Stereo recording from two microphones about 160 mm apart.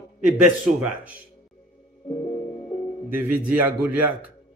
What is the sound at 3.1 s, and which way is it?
A man's voice, 10° right (ahead or behind).